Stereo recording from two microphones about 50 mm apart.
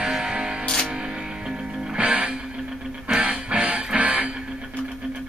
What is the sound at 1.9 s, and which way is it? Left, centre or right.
Music, right.